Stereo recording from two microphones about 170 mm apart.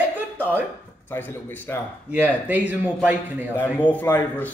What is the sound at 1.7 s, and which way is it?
Speech, 20° left (ahead or behind).